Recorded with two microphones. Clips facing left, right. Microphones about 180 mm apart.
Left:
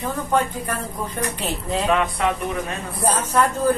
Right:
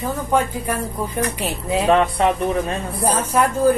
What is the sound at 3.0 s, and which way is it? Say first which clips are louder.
Speech: right 1 dB; 10° right (ahead or behind).